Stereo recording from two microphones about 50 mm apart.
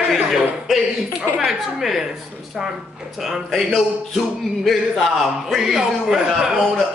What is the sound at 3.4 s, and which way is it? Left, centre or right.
A man's voice, centre.